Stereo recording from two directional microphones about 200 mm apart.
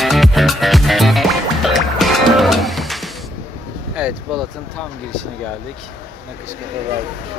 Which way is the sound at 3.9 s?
5° right (ahead or behind).